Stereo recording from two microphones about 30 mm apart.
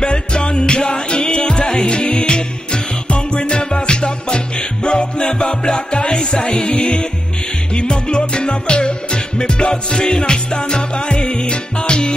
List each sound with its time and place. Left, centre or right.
0.0 s music: left